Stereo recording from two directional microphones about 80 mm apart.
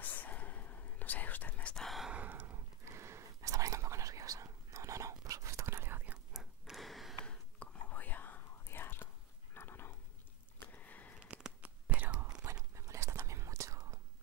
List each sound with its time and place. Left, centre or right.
0.0 s whispering: left
1.8 s a sound: centre
2.0 s a sound: centre
2.8 s whispering: right
6.3 s gasp: centre
7.2 s whispering: centre
10.6 s sniff: left
11.2 s whispering: centre
12.7 s whispering: right